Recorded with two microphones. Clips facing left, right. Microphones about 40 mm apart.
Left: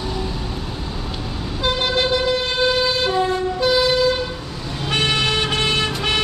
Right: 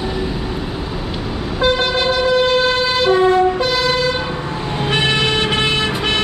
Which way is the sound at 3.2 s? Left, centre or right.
Right.